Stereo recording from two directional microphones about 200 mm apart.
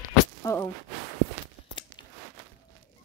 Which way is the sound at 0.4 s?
15° left (ahead or behind).